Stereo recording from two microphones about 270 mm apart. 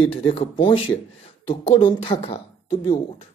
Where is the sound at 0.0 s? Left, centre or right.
Left.